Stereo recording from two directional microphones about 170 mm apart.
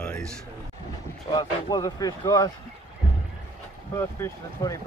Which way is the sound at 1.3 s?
25° left (ahead or behind).